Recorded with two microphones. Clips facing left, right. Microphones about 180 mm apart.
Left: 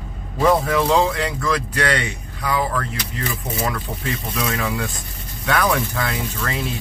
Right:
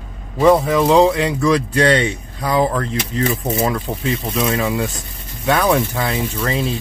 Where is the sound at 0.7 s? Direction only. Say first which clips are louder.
Right 5 dB; 20° right (ahead or behind).